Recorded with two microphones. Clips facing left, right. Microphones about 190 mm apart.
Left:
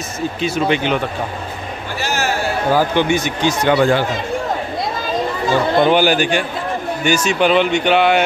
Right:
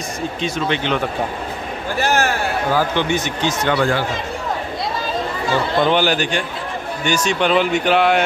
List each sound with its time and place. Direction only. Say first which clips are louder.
0.4 s speech: left 4 dB; 5° left (ahead or behind)
2.0 s a sound: right 3 dB; 55° right (ahead or behind)
2.7 s speech: left 4 dB; 10° left (ahead or behind)
5.8 s speech: left 3 dB; 10° left (ahead or behind)